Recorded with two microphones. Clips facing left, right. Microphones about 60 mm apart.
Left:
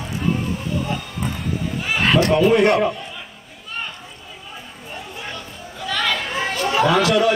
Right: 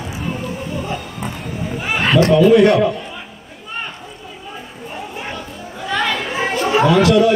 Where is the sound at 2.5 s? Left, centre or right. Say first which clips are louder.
Right 4 dB; left.